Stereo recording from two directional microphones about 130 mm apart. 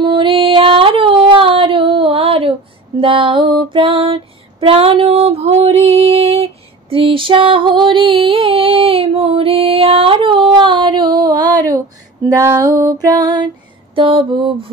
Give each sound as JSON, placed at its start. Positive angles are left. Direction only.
{"t": 0.0, "sound": "a sound", "side_deg": -40}
{"t": 3.0, "sound": "female singing", "side_deg": -40}
{"t": 13.0, "sound": "mantra", "side_deg": -30}